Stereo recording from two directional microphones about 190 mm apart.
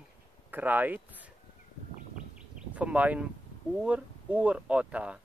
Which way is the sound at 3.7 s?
5° right (ahead or behind).